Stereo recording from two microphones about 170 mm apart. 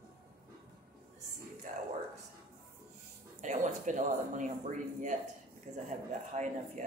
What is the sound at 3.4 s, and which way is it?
Speech, 45° right (ahead or behind).